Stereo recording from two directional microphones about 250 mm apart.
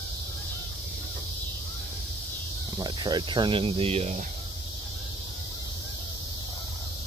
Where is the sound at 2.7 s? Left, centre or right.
Centre.